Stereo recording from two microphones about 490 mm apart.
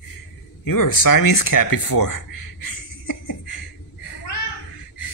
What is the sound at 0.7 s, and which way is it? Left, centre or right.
Speech, left.